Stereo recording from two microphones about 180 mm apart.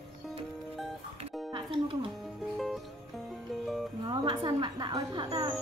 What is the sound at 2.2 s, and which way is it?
Music, centre (ahead or behind).